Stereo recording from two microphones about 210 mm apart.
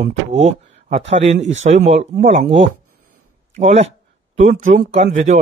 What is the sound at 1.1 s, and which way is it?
A man's voice, 35° right (ahead or behind).